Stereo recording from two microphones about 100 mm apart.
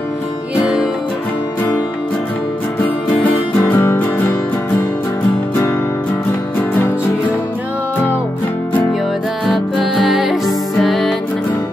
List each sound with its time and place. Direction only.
3.3 s music: 20° left (ahead or behind)
10.0 s music: 5° right (ahead or behind)